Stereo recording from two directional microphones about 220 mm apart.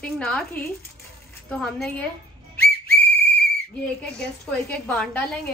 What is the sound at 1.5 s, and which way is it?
Speech, 5° left (ahead or behind).